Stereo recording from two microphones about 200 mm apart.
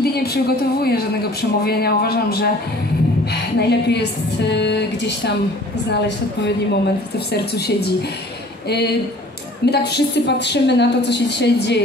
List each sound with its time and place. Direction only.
0.0 s a woman's voice: 50° left (ahead or behind)
3.5 s a woman's voice: 55° left (ahead or behind)
9.7 s a woman's voice: 55° left (ahead or behind)